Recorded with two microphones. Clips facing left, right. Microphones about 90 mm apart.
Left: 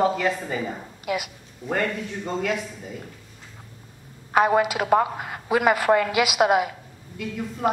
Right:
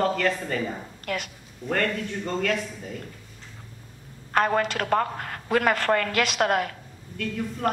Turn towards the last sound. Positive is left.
turn(degrees=5)  # may be behind; listen again after turning